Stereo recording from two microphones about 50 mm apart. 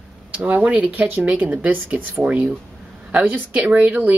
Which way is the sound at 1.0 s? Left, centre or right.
Right.